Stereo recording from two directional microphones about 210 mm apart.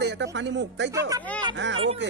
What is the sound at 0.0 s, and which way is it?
A man's voice, 55° right (ahead or behind).